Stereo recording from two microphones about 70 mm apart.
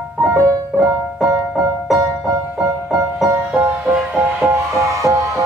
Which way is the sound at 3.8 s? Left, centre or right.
Centre.